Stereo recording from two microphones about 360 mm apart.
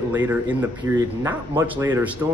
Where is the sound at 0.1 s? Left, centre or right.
Centre.